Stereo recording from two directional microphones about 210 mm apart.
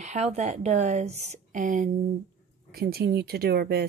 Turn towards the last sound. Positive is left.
turn(degrees=-50)  # may be behind; listen again after turning